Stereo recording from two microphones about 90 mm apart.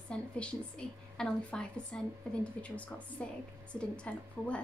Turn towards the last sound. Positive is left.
turn(degrees=15)  # may be behind; listen again after turning